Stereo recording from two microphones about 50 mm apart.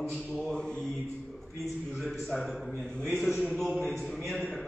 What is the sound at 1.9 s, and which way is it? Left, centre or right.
Speech, centre.